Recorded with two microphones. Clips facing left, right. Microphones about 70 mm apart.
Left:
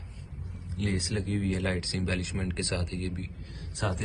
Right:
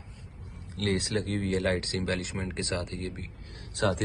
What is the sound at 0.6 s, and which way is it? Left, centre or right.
Speech, right.